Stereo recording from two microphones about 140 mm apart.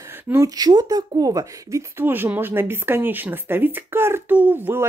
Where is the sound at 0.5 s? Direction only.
30° right (ahead or behind).